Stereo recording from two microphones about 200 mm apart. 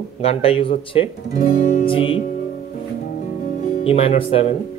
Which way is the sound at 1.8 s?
25° left (ahead or behind).